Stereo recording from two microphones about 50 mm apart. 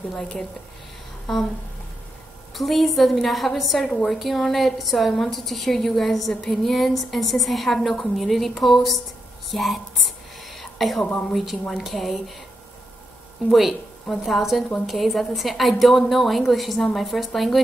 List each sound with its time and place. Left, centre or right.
0.1 s a woman's voice: centre
2.5 s a woman's voice: centre
10.5 s a sound: centre
11.1 s a woman's voice: left
11.7 s a woman's voice: centre
13.5 s a woman's voice: centre